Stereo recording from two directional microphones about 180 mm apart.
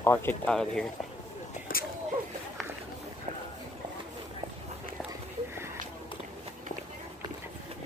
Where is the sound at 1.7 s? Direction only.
50° left (ahead or behind).